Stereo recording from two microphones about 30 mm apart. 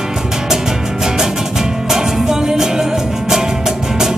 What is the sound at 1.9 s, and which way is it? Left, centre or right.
Music, centre.